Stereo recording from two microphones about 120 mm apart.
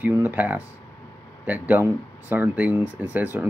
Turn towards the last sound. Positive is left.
turn(degrees=-15)  # may be behind; listen again after turning